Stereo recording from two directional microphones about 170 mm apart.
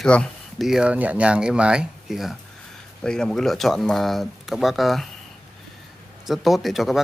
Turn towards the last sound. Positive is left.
turn(degrees=0)  # may be behind; listen again after turning